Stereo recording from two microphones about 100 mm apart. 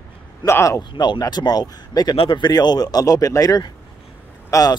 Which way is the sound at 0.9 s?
45° left (ahead or behind).